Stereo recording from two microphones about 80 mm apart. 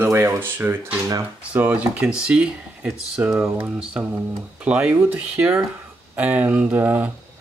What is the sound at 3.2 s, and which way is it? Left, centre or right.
Speech, right.